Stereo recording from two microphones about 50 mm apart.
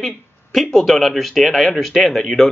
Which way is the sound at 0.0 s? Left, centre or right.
Centre.